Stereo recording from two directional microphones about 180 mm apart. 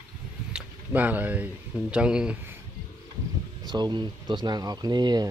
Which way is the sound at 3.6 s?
25° right (ahead or behind).